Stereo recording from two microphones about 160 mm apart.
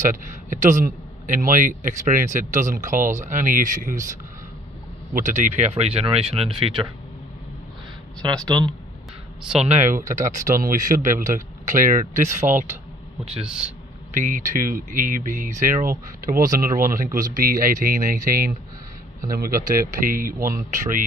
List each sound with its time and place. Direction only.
0.0 s speech: 55° right (ahead or behind); by 6.9 s 35° right (ahead or behind)
8.5 s speech: 10° left (ahead or behind)
9.6 s speech: 45° right (ahead or behind)
13.5 s speech: 5° right (ahead or behind)
14.1 s speech: 55° right (ahead or behind)